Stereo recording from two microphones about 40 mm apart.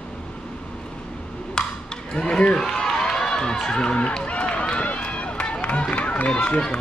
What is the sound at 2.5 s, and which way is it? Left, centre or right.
Run, centre.